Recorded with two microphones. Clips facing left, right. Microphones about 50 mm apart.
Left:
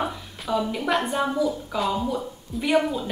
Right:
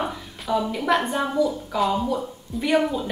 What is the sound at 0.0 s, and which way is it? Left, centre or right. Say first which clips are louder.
A woman's voice: even; centre.